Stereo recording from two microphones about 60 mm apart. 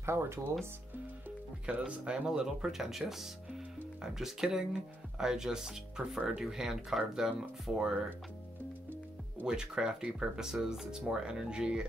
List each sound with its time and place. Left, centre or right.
0.0 s speech: right
1.7 s speech: centre
9.5 s speech: centre